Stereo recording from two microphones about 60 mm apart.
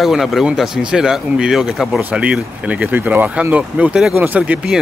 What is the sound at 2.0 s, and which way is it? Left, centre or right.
Speech, right.